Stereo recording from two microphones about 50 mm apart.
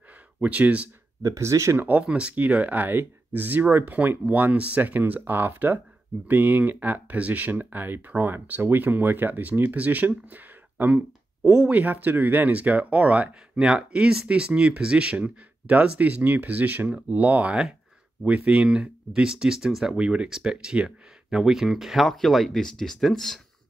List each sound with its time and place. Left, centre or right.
0.4 s speech: right
1.2 s speech: right
1.8 s speech: right
2.0 s speech: right
2.3 s speech: right
11.5 s speech: right
18.8 s speech: centre